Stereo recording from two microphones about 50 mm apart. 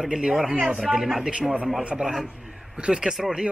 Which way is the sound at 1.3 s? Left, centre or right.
Centre.